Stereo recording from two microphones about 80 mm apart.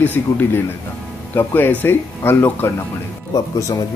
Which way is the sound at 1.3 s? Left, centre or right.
Left.